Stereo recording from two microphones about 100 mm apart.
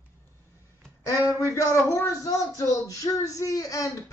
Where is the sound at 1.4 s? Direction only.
30° left (ahead or behind).